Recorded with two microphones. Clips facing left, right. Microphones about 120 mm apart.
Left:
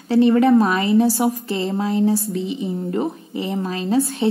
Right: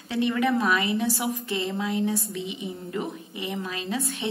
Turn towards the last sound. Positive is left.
turn(degrees=35)  # may be behind; listen again after turning